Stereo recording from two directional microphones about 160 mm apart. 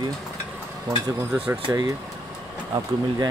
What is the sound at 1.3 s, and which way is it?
Speech, 10° right (ahead or behind).